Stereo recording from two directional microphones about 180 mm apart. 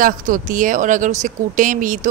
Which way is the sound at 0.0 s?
50° right (ahead or behind).